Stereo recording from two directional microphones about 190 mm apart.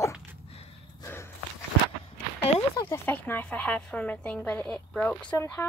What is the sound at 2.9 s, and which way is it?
A woman's voice, 10° left (ahead or behind).